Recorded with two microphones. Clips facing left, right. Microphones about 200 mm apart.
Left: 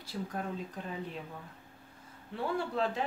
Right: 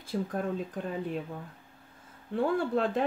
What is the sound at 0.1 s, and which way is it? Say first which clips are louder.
Speech: right 7 dB; 50° right (ahead or behind).